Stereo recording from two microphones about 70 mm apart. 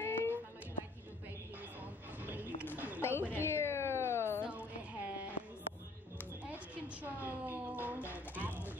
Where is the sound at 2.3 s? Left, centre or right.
Right.